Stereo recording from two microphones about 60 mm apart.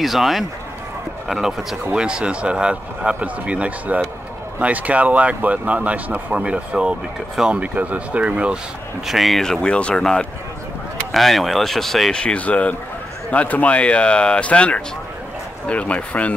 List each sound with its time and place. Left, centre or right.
0.0 s speech: centre
1.9 s speech: centre
9.0 s speech: centre
9.4 s speech: centre
11.1 s speech: centre
12.2 s speech: centre